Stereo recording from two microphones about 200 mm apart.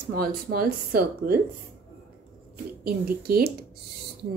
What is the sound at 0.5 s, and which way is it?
Speech, 50° right (ahead or behind).